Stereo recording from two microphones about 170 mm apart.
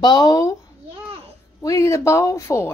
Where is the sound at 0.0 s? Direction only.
25° left (ahead or behind).